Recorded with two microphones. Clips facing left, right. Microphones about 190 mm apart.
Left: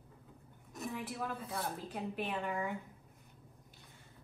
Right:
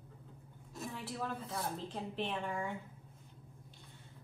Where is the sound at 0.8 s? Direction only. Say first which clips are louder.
Left 1 dB; 15° left (ahead or behind).